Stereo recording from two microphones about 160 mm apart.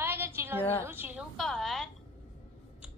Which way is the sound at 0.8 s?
10° right (ahead or behind).